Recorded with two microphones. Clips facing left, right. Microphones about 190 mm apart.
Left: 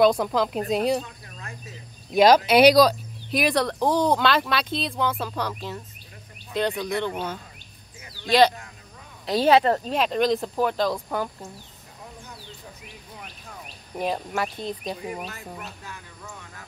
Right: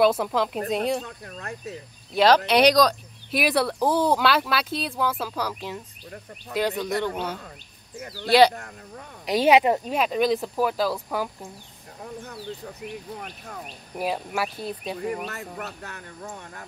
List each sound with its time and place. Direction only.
0.0 s speech: 5° right (ahead or behind)
1.0 s speech: 55° right (ahead or behind)
2.1 s speech: 10° left (ahead or behind); by 6.7 s 10° right (ahead or behind)
8.0 s speech: 45° right (ahead or behind)
8.3 s speech: 10° right (ahead or behind)
13.9 s speech: 5° right (ahead or behind)
15.2 s speech: 65° right (ahead or behind)
16.2 s speech: 50° right (ahead or behind)